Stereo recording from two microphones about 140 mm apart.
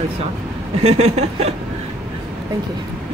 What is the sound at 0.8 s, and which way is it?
Speech, 50° right (ahead or behind).